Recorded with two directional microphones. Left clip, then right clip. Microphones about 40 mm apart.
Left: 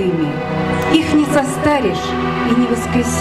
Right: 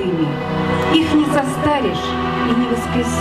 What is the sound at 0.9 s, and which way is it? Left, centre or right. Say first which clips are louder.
A woman's voice: left 2 dB; left.